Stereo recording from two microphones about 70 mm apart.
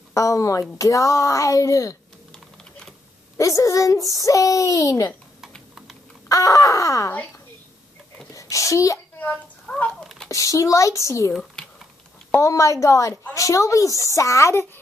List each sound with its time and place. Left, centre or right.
0.1 s speech: left
3.3 s speech: left
6.2 s speech: left
7.1 s a woman's voice: left
8.3 s a sound: left
9.7 s a sound: left
10.2 s speech: left
11.6 s typing: centre
12.3 s speech: left